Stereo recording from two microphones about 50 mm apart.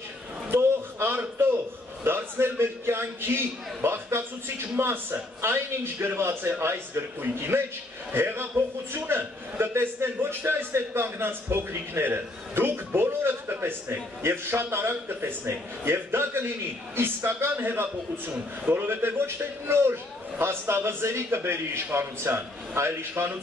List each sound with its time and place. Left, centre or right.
0.5 s a sound: right
5.4 s a man's voice: right
21.4 s a man's voice: right